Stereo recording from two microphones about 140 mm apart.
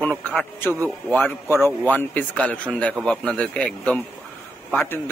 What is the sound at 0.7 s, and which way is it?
Speech, 20° right (ahead or behind).